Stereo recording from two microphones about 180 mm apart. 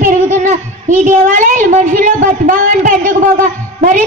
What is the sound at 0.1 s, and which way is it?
A woman's voice, 45° right (ahead or behind).